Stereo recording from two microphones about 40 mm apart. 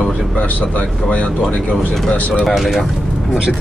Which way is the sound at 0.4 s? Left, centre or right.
Left.